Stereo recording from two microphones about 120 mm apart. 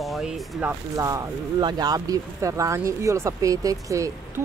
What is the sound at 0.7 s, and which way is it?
Speech, 25° right (ahead or behind).